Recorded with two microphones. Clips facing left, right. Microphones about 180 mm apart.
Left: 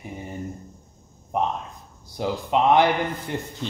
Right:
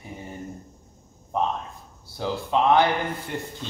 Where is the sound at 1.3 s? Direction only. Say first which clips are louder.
Left 1 dB; 20° left (ahead or behind).